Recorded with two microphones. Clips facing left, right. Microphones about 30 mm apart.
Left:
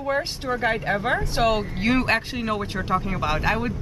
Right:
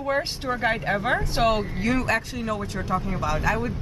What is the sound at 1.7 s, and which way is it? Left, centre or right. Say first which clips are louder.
Speech: left 2 dB; left.